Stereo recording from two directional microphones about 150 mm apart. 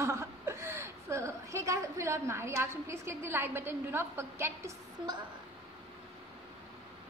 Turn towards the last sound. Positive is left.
turn(degrees=-15)  # may be behind; listen again after turning